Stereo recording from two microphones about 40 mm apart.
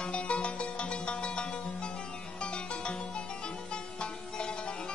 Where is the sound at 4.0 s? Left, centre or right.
Left.